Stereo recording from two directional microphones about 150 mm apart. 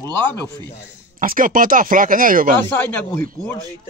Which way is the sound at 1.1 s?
65° right (ahead or behind).